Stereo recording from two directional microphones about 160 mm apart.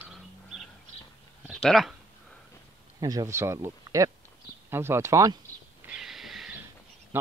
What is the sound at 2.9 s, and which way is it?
Speech, 25° right (ahead or behind).